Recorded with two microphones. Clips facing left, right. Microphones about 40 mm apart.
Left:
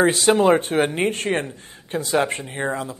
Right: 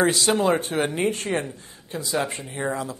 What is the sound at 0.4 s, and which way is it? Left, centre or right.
Speech, left.